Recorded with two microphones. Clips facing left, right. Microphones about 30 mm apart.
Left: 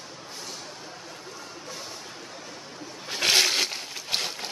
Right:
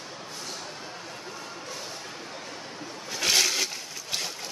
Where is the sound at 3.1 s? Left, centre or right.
Left.